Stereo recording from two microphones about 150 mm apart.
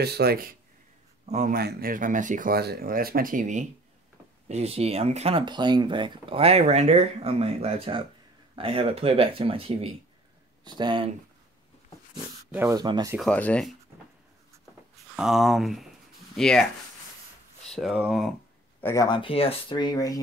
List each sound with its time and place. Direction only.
0.0 s speech: 90° right
1.2 s speech: 50° right (ahead or behind)
1.5 s speech: 90° right; by 3.6 s 60° right (ahead or behind)
4.5 s speech: 45° right (ahead or behind)
5.4 s speech: 30° right (ahead or behind)
12.4 s speech: 15° right (ahead or behind)
12.7 s speech: 25° right (ahead or behind)
13.2 s speech: 10° left (ahead or behind)
15.1 s speech: centre (ahead or behind)
17.6 s speech: centre (ahead or behind)
18.8 s speech: 15° left (ahead or behind)
19.0 s speech: 35° left (ahead or behind)